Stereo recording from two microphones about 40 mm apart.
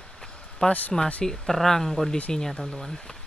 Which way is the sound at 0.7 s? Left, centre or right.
Left.